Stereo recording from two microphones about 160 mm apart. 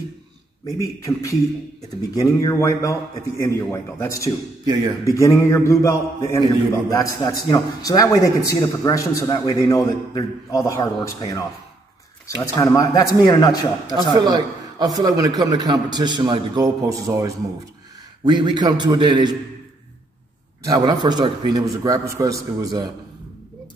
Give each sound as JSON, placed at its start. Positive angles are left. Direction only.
{"t": 1.0, "sound": "a man's voice", "side_deg": 20}
{"t": 4.6, "sound": "a man's voice", "side_deg": -20}
{"t": 5.1, "sound": "a man's voice", "side_deg": 20}
{"t": 12.4, "sound": "a man's voice", "side_deg": 20}
{"t": 14.2, "sound": "a man's voice", "side_deg": -25}
{"t": 20.6, "sound": "a man's voice", "side_deg": -25}